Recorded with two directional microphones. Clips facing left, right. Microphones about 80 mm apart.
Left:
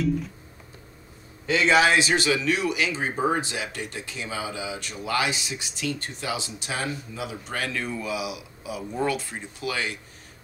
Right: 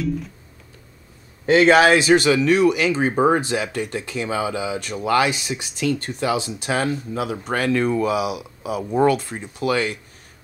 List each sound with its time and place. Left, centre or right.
1.4 s speech: right